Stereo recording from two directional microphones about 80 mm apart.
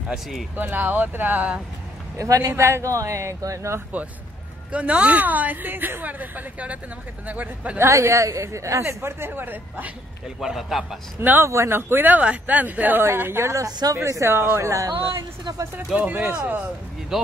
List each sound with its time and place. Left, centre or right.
0.1 s a man's voice: centre
0.6 s speech: right
2.1 s speech: right
4.6 s speech: centre
7.8 s speech: right
10.2 s a man's voice: centre
11.1 s speech: right
13.7 s speech: right
13.9 s speech: right
14.7 s speech: right
15.9 s speech: right
17.1 s a man's voice: centre